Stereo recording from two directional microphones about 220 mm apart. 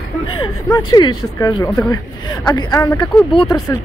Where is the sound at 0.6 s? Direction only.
15° left (ahead or behind).